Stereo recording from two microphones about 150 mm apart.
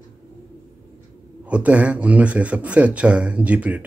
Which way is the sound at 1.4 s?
10° right (ahead or behind).